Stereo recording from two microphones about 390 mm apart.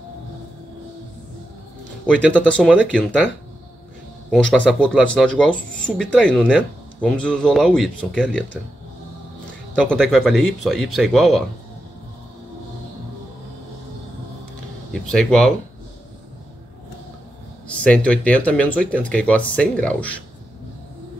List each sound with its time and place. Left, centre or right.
2.0 s speech: centre
4.3 s speech: centre
9.8 s speech: centre
15.1 s speech: centre
17.6 s speech: centre